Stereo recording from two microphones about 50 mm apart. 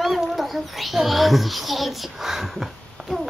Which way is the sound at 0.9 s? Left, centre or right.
Centre.